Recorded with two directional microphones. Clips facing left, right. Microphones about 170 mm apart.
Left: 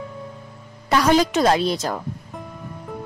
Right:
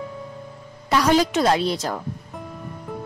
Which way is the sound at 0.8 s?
50° left (ahead or behind).